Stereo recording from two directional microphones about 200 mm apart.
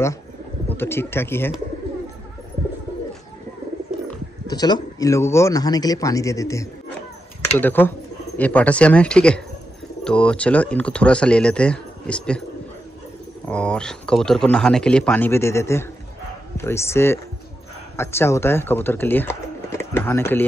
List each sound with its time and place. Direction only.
0.7 s speech: 10° left (ahead or behind)
4.5 s speech: 20° left (ahead or behind)
13.5 s speech: 5° left (ahead or behind)